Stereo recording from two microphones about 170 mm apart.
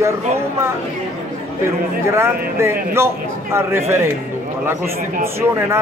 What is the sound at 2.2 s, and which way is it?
A man's voice, 15° right (ahead or behind).